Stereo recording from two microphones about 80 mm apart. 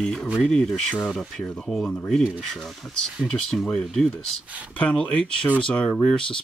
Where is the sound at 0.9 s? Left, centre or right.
Centre.